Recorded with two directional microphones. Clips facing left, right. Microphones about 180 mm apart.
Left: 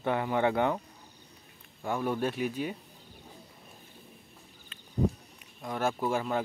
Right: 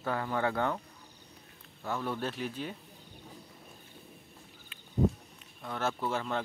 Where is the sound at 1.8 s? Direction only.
15° left (ahead or behind).